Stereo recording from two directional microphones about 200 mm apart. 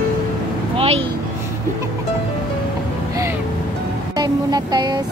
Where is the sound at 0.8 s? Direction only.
30° right (ahead or behind).